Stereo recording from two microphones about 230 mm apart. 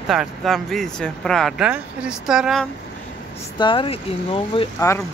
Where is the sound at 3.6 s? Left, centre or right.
Left.